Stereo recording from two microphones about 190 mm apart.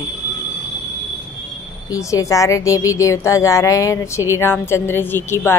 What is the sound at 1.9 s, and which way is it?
A woman's voice, 15° left (ahead or behind).